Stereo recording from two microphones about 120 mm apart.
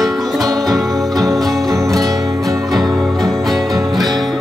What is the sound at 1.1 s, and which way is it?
Music, 30° right (ahead or behind).